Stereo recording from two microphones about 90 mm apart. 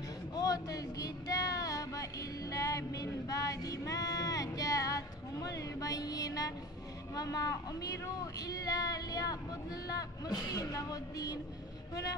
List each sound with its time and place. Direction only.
0.3 s music: 45° left (ahead or behind)
7.2 s speech: 45° left (ahead or behind)